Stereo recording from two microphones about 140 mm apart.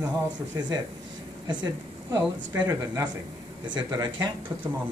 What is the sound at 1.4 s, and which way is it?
Speech, 30° right (ahead or behind).